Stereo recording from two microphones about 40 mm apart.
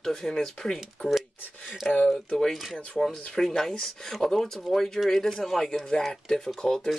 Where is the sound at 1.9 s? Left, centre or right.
Centre.